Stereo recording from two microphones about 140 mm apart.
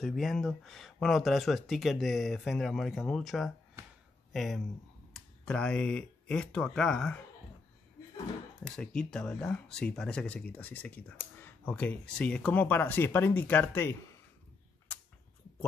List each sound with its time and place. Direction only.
0.0 s speech: centre (ahead or behind)
8.6 s speech: 5° left (ahead or behind)